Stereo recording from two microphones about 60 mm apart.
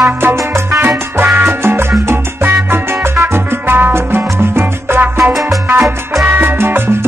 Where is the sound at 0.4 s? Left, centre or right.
Right.